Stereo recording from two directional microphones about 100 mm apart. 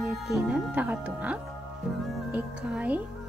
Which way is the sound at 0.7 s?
15° right (ahead or behind).